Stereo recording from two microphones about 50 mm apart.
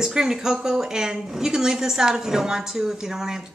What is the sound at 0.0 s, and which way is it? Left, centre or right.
Speech, centre.